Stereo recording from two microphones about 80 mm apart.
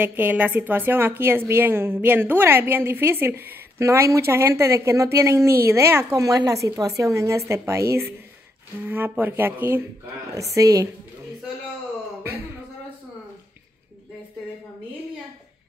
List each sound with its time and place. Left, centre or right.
0.0 s a woman's voice: right
3.8 s a woman's voice: right
10.3 s a woman's voice: right